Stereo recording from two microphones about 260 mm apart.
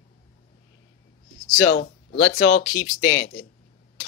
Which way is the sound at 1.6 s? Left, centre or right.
Left.